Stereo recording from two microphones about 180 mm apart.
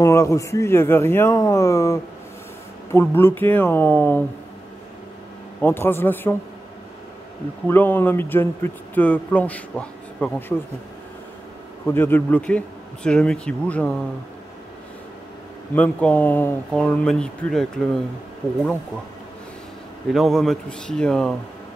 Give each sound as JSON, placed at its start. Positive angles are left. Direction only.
{"t": 0.0, "sound": "speech", "side_deg": 15}
{"t": 5.6, "sound": "speech", "side_deg": 10}
{"t": 7.6, "sound": "speech", "side_deg": 10}
{"t": 11.9, "sound": "speech", "side_deg": 10}
{"t": 15.7, "sound": "speech", "side_deg": 10}
{"t": 20.1, "sound": "a man's voice", "side_deg": 0}